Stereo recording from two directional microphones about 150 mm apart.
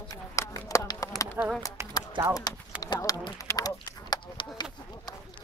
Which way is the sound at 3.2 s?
25° left (ahead or behind).